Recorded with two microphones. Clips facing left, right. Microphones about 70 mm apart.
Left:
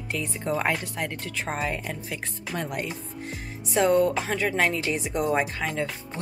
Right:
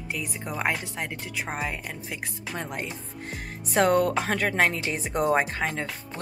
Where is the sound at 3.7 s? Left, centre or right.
Right.